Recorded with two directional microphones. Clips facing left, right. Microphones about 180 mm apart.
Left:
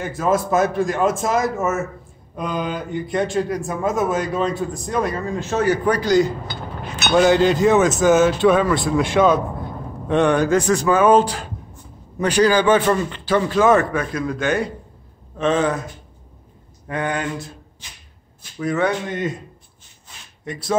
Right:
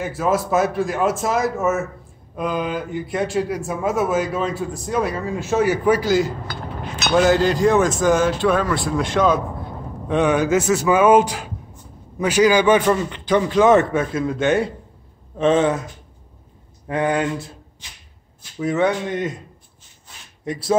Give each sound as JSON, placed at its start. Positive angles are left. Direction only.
{"t": 0.0, "sound": "a man's voice", "side_deg": -5}
{"t": 16.8, "sound": "speech", "side_deg": -25}
{"t": 18.6, "sound": "a man's voice", "side_deg": -20}
{"t": 20.4, "sound": "a man's voice", "side_deg": -30}